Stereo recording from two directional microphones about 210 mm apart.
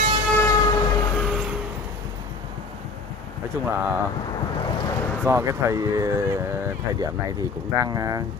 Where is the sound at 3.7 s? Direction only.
10° right (ahead or behind).